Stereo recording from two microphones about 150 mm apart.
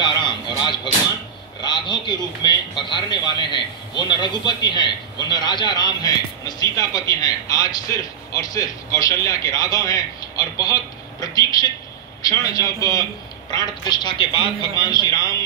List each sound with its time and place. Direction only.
0.0 s a man's voice: 30° left (ahead or behind)